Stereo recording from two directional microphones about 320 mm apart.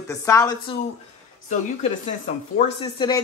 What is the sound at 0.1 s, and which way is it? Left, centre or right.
Speech, centre.